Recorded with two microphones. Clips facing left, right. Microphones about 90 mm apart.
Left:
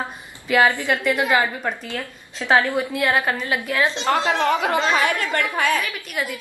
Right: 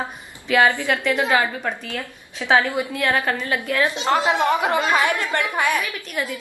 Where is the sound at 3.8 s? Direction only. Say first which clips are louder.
Right 1 dB; 15° right (ahead or behind).